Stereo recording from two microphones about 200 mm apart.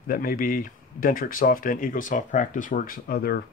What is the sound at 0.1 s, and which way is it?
Speech, 45° left (ahead or behind).